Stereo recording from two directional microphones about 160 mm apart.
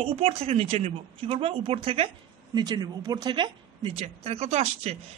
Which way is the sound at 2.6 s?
25° right (ahead or behind).